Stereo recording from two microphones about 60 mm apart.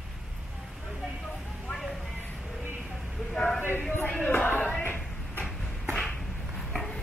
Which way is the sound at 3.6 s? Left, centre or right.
Left.